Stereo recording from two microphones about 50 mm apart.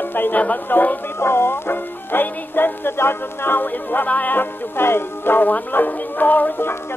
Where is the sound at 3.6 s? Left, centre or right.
Left.